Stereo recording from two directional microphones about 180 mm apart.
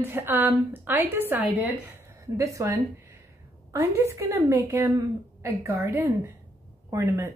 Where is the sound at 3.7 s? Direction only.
15° right (ahead or behind).